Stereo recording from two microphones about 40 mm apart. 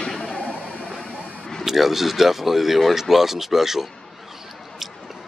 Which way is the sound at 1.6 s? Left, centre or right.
Centre.